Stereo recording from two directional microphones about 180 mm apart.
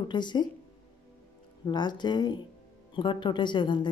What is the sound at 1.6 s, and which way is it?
Speech, 25° left (ahead or behind).